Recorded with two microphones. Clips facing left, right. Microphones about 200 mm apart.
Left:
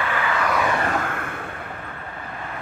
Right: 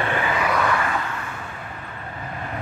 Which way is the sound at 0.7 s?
45° left (ahead or behind).